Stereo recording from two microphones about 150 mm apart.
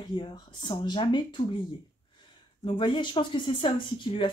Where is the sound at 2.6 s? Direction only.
35° left (ahead or behind).